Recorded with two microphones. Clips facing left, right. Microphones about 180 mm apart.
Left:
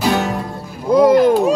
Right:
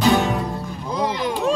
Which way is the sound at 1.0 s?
50° left (ahead or behind).